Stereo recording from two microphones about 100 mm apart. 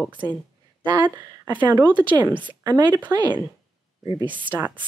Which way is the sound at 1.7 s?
50° right (ahead or behind).